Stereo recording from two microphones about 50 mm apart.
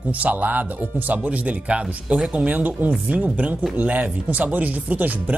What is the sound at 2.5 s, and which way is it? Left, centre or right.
Speech, right.